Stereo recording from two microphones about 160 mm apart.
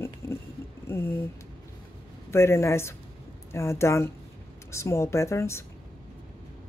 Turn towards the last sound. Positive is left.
turn(degrees=15)  # may be behind; listen again after turning